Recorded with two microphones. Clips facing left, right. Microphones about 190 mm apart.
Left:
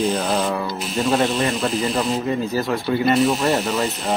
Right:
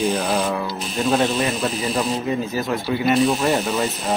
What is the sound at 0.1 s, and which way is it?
Speech, 10° right (ahead or behind).